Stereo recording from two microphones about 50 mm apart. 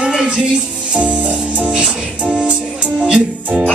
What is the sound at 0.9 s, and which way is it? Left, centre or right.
Music, right.